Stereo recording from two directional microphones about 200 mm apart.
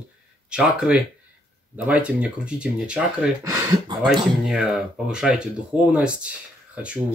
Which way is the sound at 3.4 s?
20° right (ahead or behind).